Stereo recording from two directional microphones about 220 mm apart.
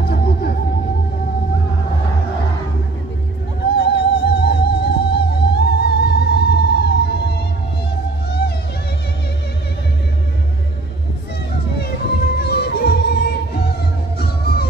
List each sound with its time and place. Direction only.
0.0 s music: 45° left (ahead or behind)
3.7 s music: 45° left (ahead or behind)
12.4 s music: 45° left (ahead or behind)